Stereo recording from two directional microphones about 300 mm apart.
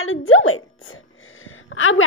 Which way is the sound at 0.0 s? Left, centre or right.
Left.